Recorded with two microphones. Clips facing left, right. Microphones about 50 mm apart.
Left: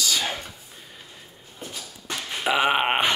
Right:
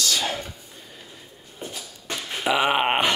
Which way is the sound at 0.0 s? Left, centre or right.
Centre.